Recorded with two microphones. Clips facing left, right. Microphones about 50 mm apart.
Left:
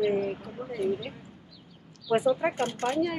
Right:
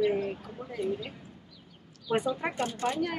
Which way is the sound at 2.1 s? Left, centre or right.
Centre.